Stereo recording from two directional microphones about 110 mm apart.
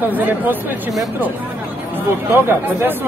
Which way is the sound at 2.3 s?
20° right (ahead or behind).